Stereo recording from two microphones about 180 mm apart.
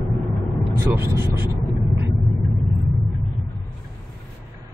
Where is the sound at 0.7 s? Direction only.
15° right (ahead or behind).